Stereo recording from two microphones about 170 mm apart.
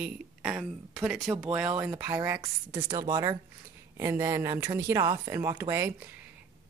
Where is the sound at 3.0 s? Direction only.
25° right (ahead or behind).